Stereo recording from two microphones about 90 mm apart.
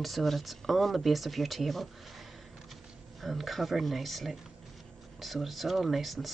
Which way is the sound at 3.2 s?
Centre (ahead or behind).